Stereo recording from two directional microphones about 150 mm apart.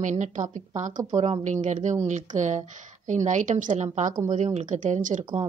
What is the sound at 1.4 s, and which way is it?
A woman's voice, 55° right (ahead or behind).